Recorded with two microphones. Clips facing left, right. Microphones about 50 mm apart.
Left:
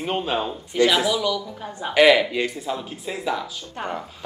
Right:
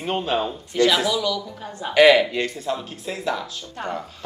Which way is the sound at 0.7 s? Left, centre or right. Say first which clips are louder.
Even; centre.